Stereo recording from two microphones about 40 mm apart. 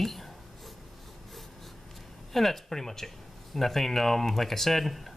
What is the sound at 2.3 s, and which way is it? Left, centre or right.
Speech, centre.